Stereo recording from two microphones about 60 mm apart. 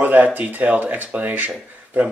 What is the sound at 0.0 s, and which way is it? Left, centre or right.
Speech, right.